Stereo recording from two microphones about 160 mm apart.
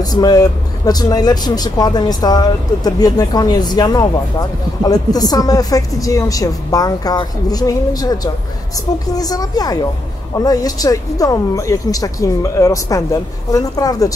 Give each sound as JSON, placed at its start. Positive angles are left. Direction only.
{"t": 0.0, "sound": "speech", "side_deg": 25}